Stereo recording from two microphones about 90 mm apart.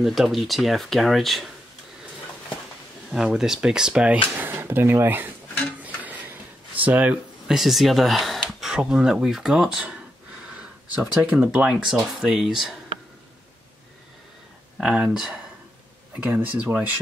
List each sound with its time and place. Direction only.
0.0 s speech: centre (ahead or behind)
3.3 s speech: 5° right (ahead or behind)
4.4 s speech: 25° right (ahead or behind)
5.9 s a sound: 15° right (ahead or behind)
7.4 s speech: 5° right (ahead or behind)
14.8 s speech: 10° right (ahead or behind)
16.2 s speech: 15° right (ahead or behind)